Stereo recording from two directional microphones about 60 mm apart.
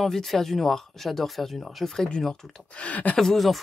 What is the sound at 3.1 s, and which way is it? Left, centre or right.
Speech, centre.